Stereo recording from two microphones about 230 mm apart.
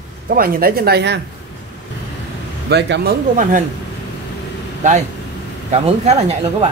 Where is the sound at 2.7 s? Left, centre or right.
Right.